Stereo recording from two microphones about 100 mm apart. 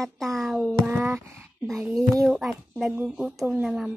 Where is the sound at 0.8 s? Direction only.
25° right (ahead or behind).